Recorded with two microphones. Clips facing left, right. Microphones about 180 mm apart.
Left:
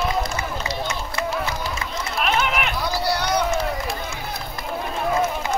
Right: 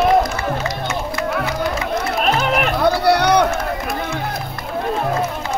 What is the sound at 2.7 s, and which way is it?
Run, 60° right (ahead or behind).